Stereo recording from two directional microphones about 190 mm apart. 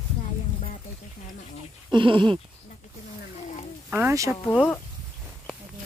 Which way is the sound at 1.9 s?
25° right (ahead or behind).